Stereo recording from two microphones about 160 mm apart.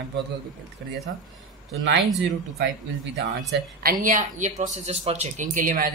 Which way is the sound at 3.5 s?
70° right (ahead or behind).